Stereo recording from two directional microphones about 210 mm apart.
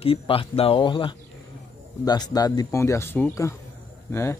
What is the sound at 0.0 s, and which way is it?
Speech, 25° left (ahead or behind).